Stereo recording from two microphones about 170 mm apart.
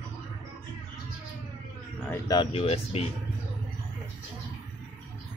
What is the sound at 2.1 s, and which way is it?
Speech, 25° left (ahead or behind).